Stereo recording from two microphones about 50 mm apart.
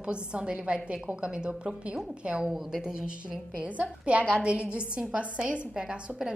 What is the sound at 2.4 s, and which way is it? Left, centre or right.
A woman's voice, centre.